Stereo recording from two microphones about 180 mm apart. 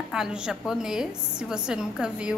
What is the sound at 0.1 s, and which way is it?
A woman's voice, 5° right (ahead or behind).